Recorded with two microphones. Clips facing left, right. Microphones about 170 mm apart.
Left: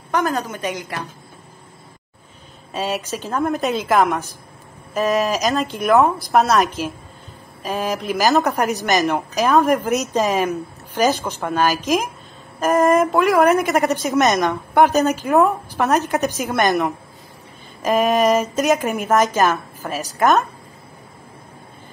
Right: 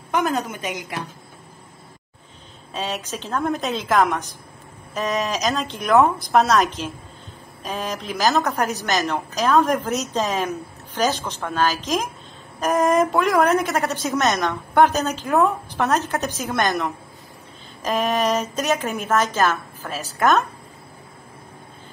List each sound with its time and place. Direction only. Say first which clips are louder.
0.5 s a woman's voice: left 3 dB; 15° right (ahead or behind)
2.7 s a woman's voice: left 4 dB; 5° left (ahead or behind)
8.2 s a woman's voice: left 2 dB; 15° left (ahead or behind)
12.5 s a woman's voice: left 3 dB; centre (ahead or behind)
13.6 s a woman's voice: left 4 dB; 15° left (ahead or behind)
15.2 s a woman's voice: left 1 dB; centre (ahead or behind)
15.8 s a woman's voice: left 3 dB; 15° left (ahead or behind)
18.0 s a woman's voice: left 5 dB; 15° left (ahead or behind)